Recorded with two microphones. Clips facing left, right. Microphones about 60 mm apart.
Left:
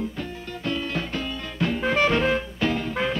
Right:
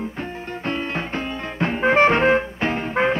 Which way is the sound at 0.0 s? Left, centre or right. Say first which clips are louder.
Right 2 dB; right.